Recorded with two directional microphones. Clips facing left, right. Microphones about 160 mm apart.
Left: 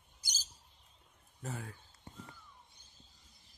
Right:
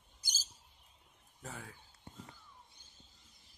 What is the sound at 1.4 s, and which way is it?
Speech, 5° left (ahead or behind).